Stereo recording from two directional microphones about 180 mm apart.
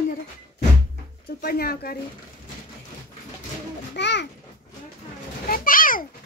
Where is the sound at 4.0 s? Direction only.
75° left (ahead or behind).